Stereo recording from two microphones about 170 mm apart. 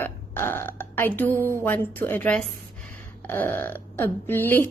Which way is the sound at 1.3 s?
15° right (ahead or behind).